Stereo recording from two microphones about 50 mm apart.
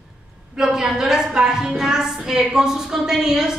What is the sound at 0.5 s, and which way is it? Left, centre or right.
A woman's voice, centre.